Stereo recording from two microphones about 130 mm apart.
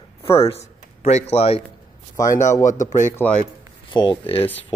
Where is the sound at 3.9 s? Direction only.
35° left (ahead or behind).